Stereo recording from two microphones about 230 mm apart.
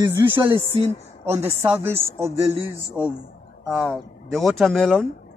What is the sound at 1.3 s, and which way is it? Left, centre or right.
Speech, centre.